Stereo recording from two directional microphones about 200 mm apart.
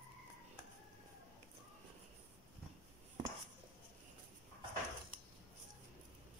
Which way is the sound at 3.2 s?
25° right (ahead or behind).